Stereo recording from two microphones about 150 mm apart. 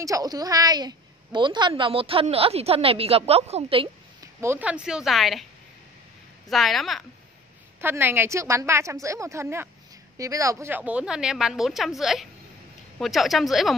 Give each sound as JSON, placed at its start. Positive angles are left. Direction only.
{"t": 0.0, "sound": "a woman's voice", "side_deg": -25}
{"t": 4.2, "sound": "a woman's voice", "side_deg": -15}
{"t": 6.5, "sound": "a woman's voice", "side_deg": 0}
{"t": 7.8, "sound": "a woman's voice", "side_deg": -15}